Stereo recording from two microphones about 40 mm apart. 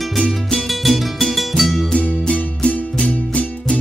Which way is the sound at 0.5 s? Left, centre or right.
Centre.